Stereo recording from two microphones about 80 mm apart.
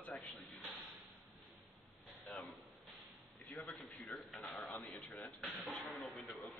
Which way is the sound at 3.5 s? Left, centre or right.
Centre.